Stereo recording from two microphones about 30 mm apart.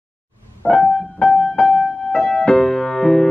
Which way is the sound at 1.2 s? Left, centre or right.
Left.